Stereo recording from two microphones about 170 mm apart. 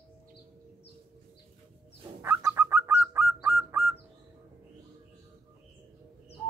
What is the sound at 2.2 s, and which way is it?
Bird, 15° right (ahead or behind).